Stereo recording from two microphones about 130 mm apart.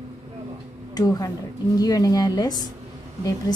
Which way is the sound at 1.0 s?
30° left (ahead or behind).